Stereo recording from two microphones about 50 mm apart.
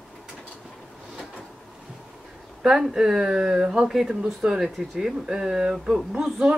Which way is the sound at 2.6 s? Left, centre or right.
Centre.